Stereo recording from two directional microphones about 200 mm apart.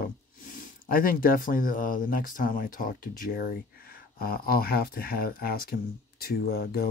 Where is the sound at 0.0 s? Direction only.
45° left (ahead or behind).